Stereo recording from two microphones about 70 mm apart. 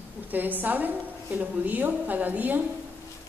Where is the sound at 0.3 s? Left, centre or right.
Right.